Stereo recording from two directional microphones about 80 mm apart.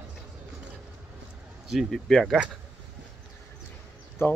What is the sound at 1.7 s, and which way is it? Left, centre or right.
Speech, centre.